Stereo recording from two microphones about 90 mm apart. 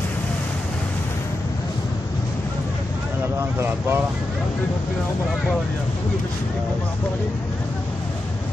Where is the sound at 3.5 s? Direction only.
25° right (ahead or behind).